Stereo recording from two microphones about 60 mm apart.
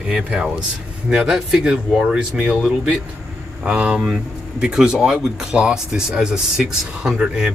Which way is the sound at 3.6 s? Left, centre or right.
Centre.